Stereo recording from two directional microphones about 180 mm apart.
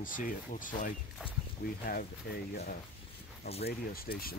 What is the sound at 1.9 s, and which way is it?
Speech, 60° left (ahead or behind).